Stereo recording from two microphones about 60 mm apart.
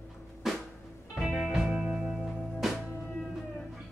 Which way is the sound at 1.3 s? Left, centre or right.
Centre.